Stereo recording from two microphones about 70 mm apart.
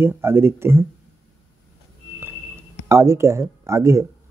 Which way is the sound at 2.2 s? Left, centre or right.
Right.